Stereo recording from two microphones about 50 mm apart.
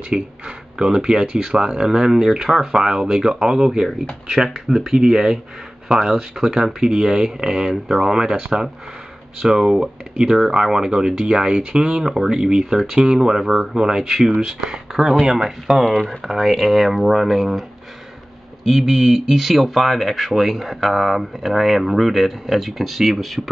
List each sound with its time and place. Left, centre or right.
0.1 s speech: centre